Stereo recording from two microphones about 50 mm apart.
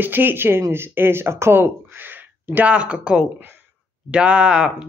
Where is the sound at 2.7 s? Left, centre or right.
Right.